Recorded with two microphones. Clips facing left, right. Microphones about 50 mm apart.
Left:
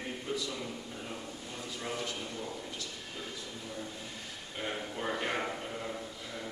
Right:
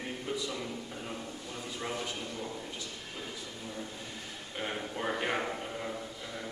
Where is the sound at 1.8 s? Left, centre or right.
Centre.